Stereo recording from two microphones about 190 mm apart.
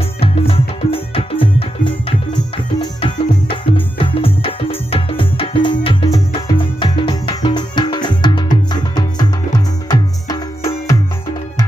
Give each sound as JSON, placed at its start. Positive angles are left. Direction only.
{"t": 0.2, "sound": "music", "side_deg": 30}
{"t": 9.8, "sound": "music", "side_deg": 20}